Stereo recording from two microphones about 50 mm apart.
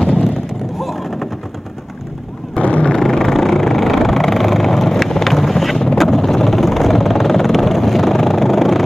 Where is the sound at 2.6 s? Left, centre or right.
Left.